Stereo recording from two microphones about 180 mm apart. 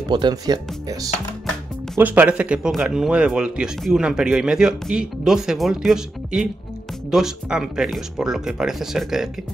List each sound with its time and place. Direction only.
0.1 s speech: 25° right (ahead or behind)
2.0 s speech: 10° right (ahead or behind)